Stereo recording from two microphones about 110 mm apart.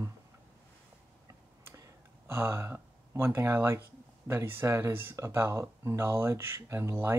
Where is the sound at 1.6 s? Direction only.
20° right (ahead or behind).